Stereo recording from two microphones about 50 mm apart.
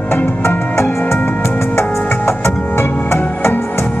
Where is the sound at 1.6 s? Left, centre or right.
Left.